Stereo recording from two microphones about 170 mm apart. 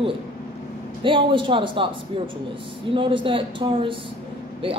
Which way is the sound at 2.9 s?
30° right (ahead or behind).